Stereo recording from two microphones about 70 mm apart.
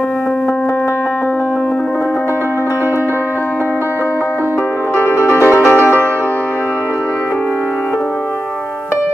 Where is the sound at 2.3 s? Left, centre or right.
Right.